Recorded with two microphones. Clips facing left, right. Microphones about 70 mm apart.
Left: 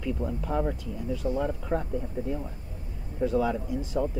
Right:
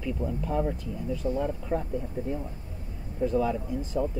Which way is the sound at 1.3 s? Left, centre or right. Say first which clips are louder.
Left 1 dB; centre.